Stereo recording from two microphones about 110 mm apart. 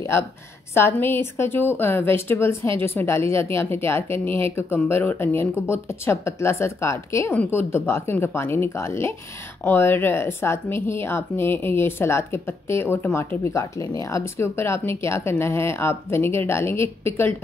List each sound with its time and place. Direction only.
0.7 s a woman's voice: 20° left (ahead or behind)